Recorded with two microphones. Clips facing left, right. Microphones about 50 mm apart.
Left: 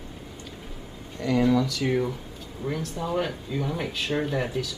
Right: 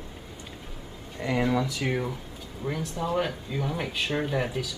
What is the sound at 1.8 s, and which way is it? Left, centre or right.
Speech, centre.